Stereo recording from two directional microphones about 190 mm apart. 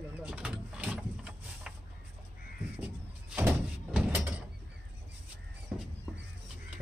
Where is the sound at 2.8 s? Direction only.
5° right (ahead or behind).